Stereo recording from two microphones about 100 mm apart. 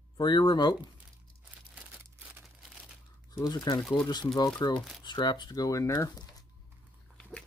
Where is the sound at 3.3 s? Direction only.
40° left (ahead or behind).